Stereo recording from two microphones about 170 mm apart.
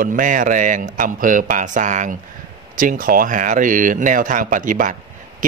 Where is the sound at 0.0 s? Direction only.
50° right (ahead or behind).